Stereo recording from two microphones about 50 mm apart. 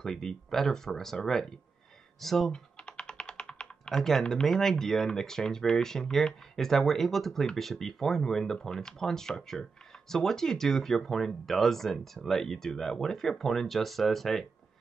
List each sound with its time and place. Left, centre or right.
0.0 s speech: centre
2.5 s typing: centre
3.9 s speech: centre